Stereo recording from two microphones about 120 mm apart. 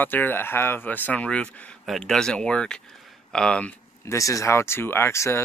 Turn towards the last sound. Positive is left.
turn(degrees=25)  # may be behind; listen again after turning